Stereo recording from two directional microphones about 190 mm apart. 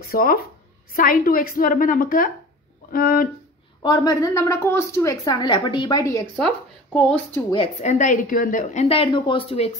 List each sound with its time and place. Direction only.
0.0 s a woman's voice: 50° left (ahead or behind)
3.8 s a woman's voice: 20° left (ahead or behind)
6.3 s speech: 5° left (ahead or behind)
7.5 s a woman's voice: 35° left (ahead or behind)
8.8 s a woman's voice: 30° left (ahead or behind)